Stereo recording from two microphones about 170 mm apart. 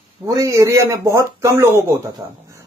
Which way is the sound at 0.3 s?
20° right (ahead or behind).